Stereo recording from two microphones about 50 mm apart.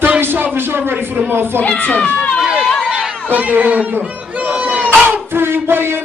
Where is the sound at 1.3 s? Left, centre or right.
Right.